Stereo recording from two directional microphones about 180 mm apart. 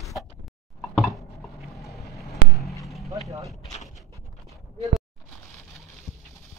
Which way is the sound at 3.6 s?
40° left (ahead or behind).